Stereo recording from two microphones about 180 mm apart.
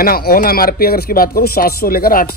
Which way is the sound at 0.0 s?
55° left (ahead or behind).